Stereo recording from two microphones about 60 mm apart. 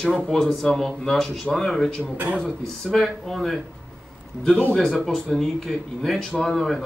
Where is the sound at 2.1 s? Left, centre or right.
Right.